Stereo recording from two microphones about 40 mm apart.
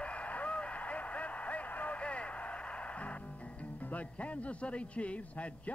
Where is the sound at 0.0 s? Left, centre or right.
Left.